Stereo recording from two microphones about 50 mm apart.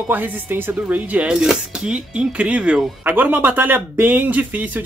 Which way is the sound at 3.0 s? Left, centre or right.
Right.